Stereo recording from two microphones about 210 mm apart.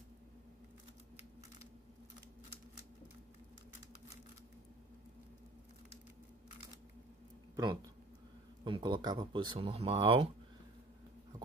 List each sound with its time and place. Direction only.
7.5 s speech: 20° right (ahead or behind)